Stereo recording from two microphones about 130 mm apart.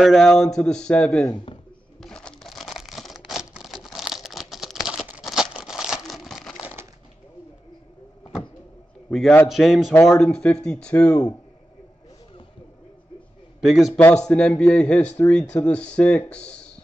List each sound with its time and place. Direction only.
0.0 s speech: centre (ahead or behind)
2.0 s crumpling: 5° left (ahead or behind)
6.6 s crushing: 15° right (ahead or behind)
9.1 s a man's voice: 5° left (ahead or behind)
13.6 s speech: centre (ahead or behind)